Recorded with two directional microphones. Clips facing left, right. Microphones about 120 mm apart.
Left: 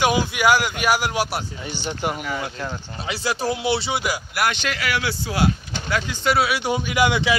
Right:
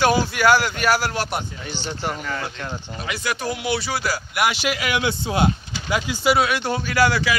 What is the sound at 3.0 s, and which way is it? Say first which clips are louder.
Speech: left 2 dB; 30° left (ahead or behind).